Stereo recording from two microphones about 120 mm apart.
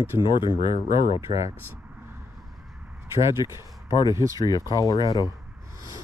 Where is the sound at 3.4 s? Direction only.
45° left (ahead or behind).